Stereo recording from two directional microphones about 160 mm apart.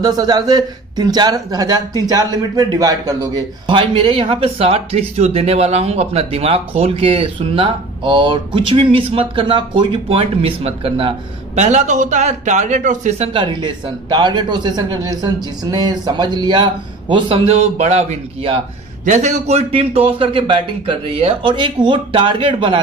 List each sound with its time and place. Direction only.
0.0 s speech: 25° right (ahead or behind); by 13.3 s 50° right (ahead or behind)
13.3 s speech: 30° right (ahead or behind)
17.6 s speech: 45° right (ahead or behind)